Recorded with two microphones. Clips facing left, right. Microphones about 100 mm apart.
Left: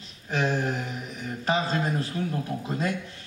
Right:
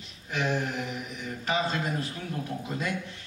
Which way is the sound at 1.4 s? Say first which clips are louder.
Left 3 dB; 35° left (ahead or behind).